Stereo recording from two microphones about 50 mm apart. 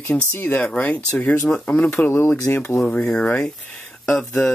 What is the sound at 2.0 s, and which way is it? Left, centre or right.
Speech, left.